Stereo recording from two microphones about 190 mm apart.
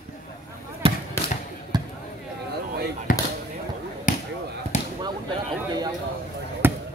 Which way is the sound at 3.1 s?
45° left (ahead or behind).